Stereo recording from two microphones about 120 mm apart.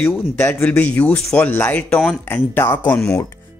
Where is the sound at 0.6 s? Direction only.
10° left (ahead or behind).